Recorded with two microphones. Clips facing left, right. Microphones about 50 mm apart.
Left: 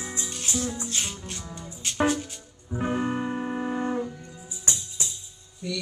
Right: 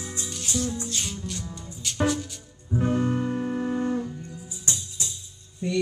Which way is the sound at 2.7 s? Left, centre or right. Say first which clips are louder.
Right 3 dB; centre.